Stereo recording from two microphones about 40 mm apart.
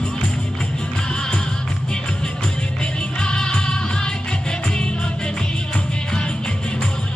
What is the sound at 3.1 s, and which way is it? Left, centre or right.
Music, centre.